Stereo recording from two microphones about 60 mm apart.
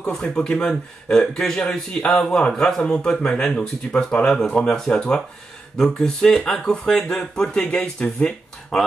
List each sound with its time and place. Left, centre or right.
0.1 s a man's voice: centre